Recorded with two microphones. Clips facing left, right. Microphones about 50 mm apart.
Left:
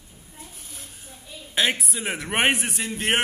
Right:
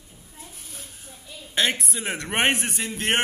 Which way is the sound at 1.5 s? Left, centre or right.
Centre.